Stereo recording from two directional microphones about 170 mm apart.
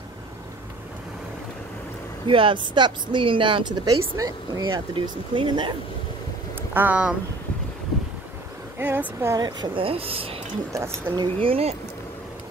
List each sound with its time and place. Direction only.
2.2 s speech: 30° right (ahead or behind)
6.7 s speech: 10° right (ahead or behind)
8.7 s speech: 10° right (ahead or behind); by 10.3 s 35° right (ahead or behind)
10.7 s speech: 15° right (ahead or behind)
11.4 s speech: 35° right (ahead or behind)